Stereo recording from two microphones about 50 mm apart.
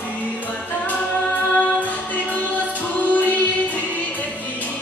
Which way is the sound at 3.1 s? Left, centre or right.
Left.